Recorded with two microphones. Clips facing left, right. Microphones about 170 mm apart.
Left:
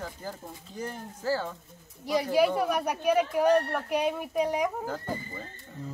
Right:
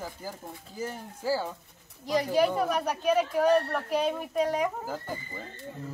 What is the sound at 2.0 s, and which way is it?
Speech, 10° left (ahead or behind).